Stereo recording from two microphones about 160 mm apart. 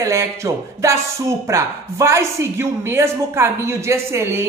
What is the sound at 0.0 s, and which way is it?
Speech, 20° right (ahead or behind).